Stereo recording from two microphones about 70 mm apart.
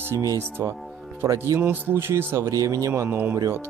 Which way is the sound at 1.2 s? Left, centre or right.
Right.